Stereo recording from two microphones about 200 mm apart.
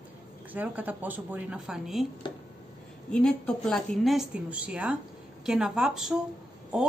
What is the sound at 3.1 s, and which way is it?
Speech, 5° left (ahead or behind).